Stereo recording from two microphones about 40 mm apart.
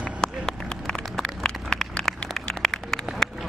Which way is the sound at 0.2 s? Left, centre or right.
Centre.